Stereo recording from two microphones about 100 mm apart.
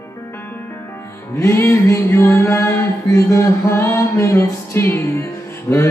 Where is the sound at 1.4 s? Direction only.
30° left (ahead or behind).